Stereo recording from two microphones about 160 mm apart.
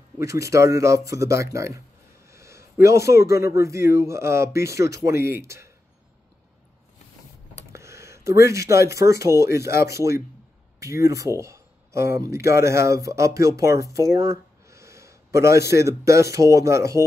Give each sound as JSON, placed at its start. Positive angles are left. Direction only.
{"t": 0.2, "sound": "speech", "side_deg": -20}
{"t": 7.7, "sound": "speech", "side_deg": -15}
{"t": 13.9, "sound": "a sound", "side_deg": -20}
{"t": 15.7, "sound": "speech", "side_deg": -20}